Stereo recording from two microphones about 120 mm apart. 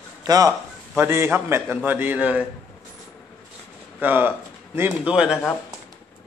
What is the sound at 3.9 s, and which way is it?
A man's voice, 15° right (ahead or behind).